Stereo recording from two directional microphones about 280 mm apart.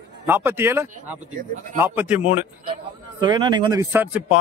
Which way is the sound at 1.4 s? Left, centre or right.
Right.